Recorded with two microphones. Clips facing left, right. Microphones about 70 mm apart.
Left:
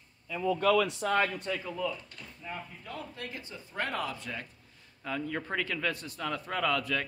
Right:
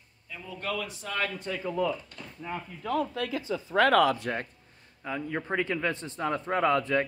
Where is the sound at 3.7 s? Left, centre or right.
Right.